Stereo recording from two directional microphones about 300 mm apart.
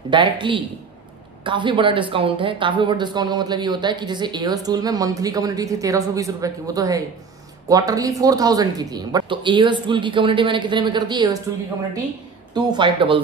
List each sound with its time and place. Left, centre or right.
0.1 s speech: centre
12.5 s speech: centre